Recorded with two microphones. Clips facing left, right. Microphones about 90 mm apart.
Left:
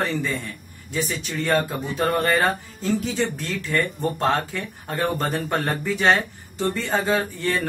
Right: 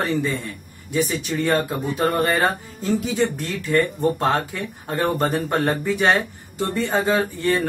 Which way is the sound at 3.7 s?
10° right (ahead or behind).